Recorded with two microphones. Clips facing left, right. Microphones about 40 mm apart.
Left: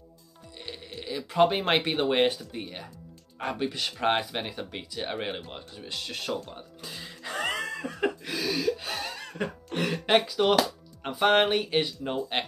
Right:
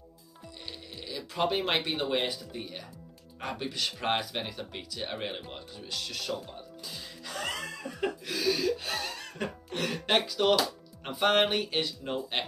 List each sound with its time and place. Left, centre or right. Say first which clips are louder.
1.0 s a sound: left 7 dB; left
1.7 s speech: left 4 dB; left
2.5 s speech: left 2 dB; left
3.3 s speech: left 4 dB; centre
5.9 s speech: left 2 dB; left
6.8 s music: left 6 dB; left
8.3 s music: even; centre
11.1 s speech: left 3 dB; centre